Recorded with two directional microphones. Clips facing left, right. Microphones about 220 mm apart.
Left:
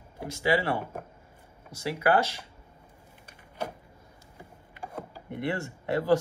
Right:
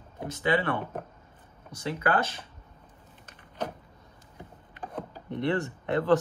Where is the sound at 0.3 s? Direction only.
25° left (ahead or behind).